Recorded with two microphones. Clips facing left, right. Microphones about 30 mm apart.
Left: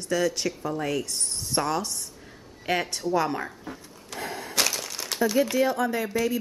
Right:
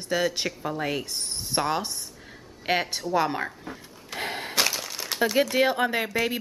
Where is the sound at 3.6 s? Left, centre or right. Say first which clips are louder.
Even; centre.